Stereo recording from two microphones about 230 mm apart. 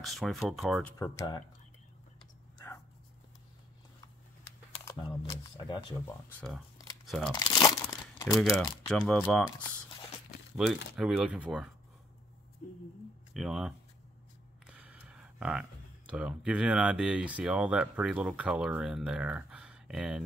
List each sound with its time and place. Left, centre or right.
0.0 s speech: centre
0.9 s speech: centre
4.8 s speech: centre
7.3 s crumpling: centre
8.4 s speech: centre
10.5 s speech: centre
13.3 s speech: centre
14.7 s a sound: centre
16.1 s speech: centre